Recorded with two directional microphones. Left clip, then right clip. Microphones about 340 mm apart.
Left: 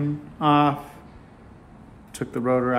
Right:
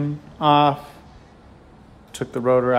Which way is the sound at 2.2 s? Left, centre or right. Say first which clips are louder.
Right 4 dB; centre.